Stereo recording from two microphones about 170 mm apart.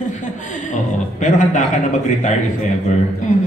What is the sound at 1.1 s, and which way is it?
Speech, 45° left (ahead or behind).